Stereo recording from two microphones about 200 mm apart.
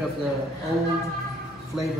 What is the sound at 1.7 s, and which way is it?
Speech, centre (ahead or behind).